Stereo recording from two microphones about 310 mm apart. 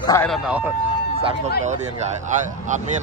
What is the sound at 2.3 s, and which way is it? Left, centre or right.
Speech, right.